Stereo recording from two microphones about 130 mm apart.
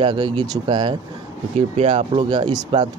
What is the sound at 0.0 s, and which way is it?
Speech, 40° right (ahead or behind).